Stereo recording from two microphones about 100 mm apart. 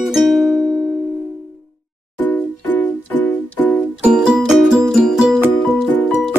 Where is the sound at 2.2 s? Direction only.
15° left (ahead or behind).